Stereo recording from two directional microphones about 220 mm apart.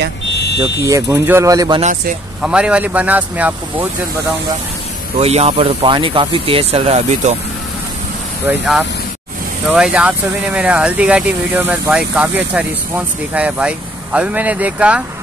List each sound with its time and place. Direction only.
0.4 s buzzer: 50° left (ahead or behind)
0.8 s speech: 15° right (ahead or behind)
2.4 s speech: 5° right (ahead or behind)
5.2 s speech: 30° right (ahead or behind)
8.5 s speech: centre (ahead or behind)